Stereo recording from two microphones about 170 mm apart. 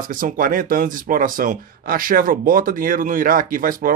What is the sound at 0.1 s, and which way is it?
Speech, 55° right (ahead or behind).